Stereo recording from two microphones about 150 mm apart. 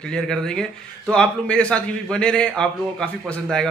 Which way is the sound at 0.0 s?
5° left (ahead or behind).